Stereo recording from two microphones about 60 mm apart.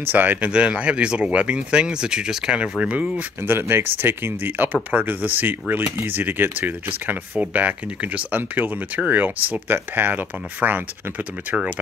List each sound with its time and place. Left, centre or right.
0.0 s speech: right
0.5 s speech: centre
3.4 s speech: right